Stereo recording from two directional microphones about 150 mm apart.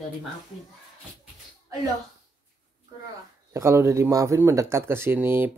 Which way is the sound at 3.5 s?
20° right (ahead or behind).